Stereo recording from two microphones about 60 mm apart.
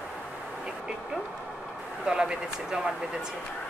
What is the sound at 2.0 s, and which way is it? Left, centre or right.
Speech, centre.